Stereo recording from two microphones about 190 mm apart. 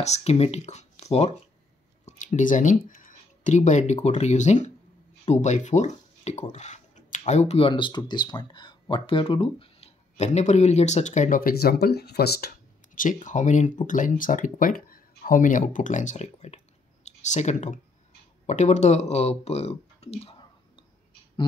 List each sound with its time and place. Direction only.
0.0 s speech: 35° left (ahead or behind)